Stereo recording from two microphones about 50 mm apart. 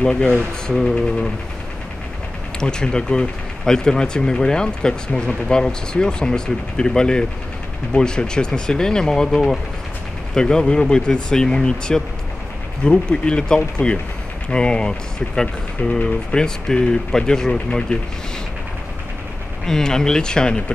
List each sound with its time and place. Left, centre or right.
0.0 s speech: centre
2.6 s speech: centre
19.6 s speech: centre